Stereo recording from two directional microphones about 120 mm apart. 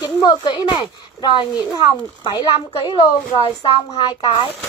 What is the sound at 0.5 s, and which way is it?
Speech, 40° left (ahead or behind).